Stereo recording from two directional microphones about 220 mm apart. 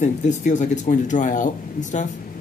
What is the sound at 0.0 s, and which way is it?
Speech, 35° left (ahead or behind).